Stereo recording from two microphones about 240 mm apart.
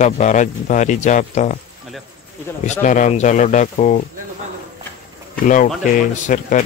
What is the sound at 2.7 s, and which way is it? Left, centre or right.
Speech, left.